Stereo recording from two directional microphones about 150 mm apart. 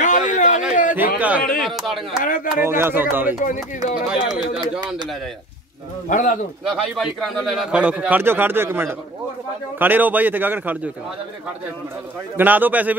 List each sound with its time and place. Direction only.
0.0 s a sound: 55° left (ahead or behind)
0.9 s a man's voice: 10° right (ahead or behind)
1.6 s speech: centre (ahead or behind)
2.2 s speech: 65° left (ahead or behind)
2.6 s a man's voice: 15° right (ahead or behind)
6.0 s speech: 55° left (ahead or behind)
6.6 s a man's voice: centre (ahead or behind)
12.4 s a man's voice: 10° right (ahead or behind)